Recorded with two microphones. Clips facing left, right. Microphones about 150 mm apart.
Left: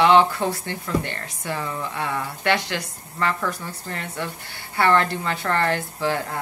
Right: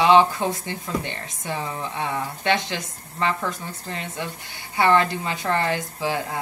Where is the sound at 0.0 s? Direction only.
20° right (ahead or behind).